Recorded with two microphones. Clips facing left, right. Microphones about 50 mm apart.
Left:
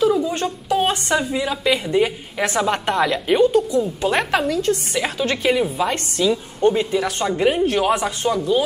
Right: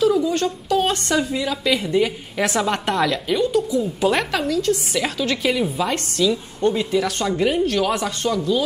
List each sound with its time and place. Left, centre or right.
0.0 s a woman's voice: centre
3.3 s a woman's voice: left
4.9 s a woman's voice: centre
6.9 s a woman's voice: centre